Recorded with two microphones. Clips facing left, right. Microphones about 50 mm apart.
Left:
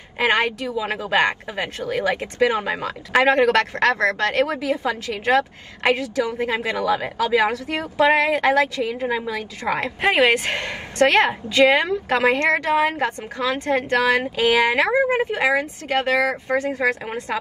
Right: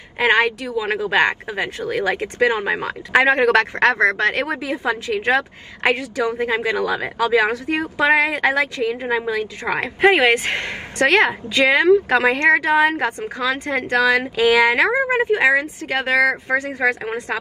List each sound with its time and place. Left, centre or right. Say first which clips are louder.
0.2 s a woman's voice: right 3 dB; right
6.3 s a woman's voice: right 3 dB; right
6.8 s a woman's voice: right 1 dB; right
9.0 s a woman's voice: right 3 dB; right
9.8 s a woman's voice: right 4 dB; right